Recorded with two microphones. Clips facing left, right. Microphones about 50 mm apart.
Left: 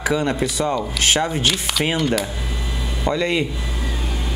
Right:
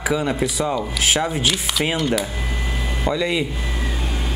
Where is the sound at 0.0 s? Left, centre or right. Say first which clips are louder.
Left 1 dB; centre.